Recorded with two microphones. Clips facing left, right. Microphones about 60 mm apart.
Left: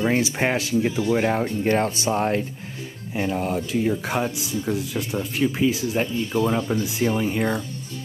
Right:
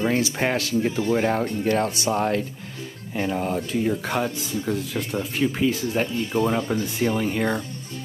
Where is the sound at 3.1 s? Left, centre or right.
Centre.